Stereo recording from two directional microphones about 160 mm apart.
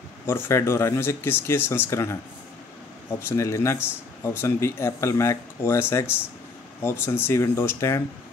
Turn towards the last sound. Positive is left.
turn(degrees=15)  # may be behind; listen again after turning